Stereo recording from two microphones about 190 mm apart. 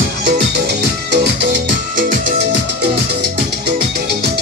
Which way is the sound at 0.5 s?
60° right (ahead or behind).